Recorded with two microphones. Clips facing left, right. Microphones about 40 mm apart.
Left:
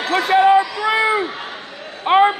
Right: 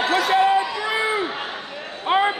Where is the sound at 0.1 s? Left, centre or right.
Left.